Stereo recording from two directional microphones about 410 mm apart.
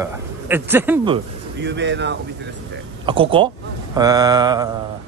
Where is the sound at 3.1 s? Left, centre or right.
Centre.